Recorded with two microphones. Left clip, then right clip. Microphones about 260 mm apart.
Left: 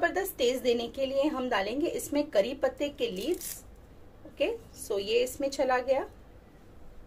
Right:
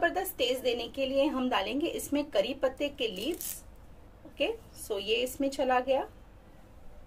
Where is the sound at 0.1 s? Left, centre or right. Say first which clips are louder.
Left 2 dB; right.